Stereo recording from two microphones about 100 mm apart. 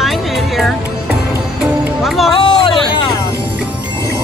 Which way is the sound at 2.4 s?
55° left (ahead or behind).